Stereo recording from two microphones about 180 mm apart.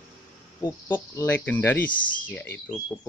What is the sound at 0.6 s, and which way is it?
Speech, 25° left (ahead or behind).